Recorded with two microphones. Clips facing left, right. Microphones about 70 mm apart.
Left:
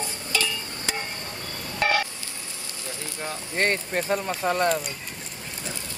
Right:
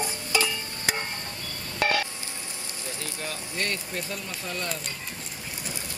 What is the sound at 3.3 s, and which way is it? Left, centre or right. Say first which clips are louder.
Speech: left 7 dB; left.